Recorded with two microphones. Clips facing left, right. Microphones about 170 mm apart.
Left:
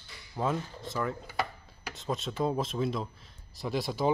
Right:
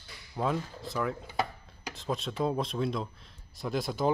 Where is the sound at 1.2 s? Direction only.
20° right (ahead or behind).